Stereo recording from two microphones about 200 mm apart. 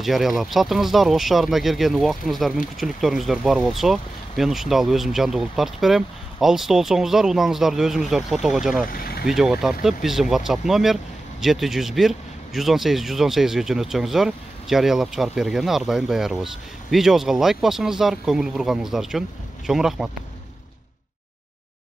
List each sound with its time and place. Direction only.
0.0 s speech: centre (ahead or behind)
8.9 s speech: 50° left (ahead or behind)
9.3 s speech: centre (ahead or behind)